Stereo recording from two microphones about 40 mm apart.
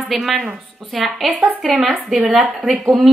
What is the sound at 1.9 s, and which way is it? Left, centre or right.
Speech, right.